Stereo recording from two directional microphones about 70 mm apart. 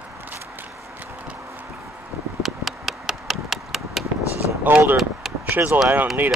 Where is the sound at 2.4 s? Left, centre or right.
Centre.